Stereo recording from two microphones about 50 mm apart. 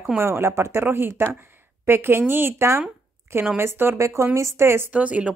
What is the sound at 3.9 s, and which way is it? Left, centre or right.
Speech, right.